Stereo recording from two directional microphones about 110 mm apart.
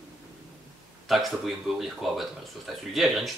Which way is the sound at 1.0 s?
Centre (ahead or behind).